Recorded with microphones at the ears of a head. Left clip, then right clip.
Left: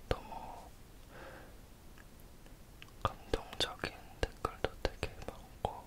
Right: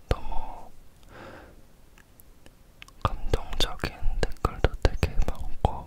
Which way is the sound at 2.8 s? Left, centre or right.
Right.